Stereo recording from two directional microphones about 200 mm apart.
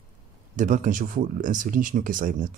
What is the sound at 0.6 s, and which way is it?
Speech, 40° right (ahead or behind).